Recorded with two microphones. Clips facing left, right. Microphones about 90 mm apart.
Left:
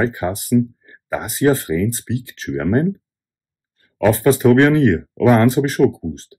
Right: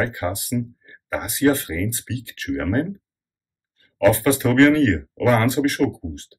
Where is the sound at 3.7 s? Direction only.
25° left (ahead or behind).